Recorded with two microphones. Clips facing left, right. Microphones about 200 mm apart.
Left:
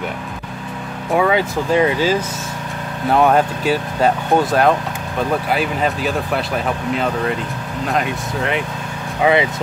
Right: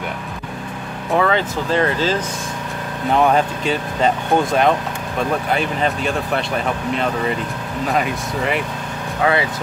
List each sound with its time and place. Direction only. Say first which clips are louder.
1.1 s speech: left 2 dB; 10° left (ahead or behind)
9.2 s speech: left 3 dB; 20° left (ahead or behind)